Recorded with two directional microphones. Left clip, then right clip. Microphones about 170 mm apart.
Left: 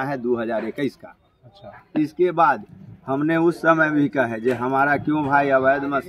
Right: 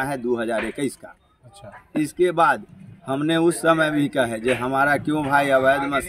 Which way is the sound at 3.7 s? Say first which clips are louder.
Left 1 dB; 5° right (ahead or behind).